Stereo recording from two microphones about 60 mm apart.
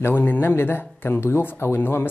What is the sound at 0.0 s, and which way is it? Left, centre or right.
Speech, left.